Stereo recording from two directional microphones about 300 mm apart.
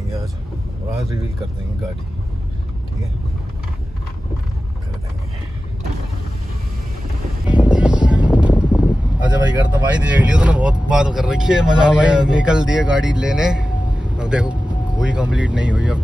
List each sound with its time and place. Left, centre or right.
7.4 s vehicle: centre
9.9 s speech: centre